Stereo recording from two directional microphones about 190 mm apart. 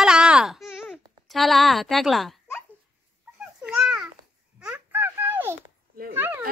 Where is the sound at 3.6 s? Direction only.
Centre (ahead or behind).